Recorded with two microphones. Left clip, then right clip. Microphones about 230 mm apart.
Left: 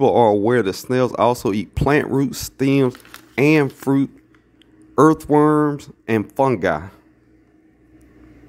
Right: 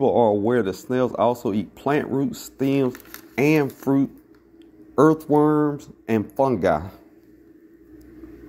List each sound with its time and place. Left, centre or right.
0.0 s speech: left